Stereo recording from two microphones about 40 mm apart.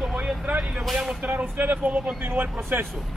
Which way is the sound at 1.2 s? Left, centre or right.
Right.